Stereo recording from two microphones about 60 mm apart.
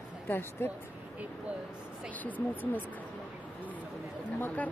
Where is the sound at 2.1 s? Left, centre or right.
Left.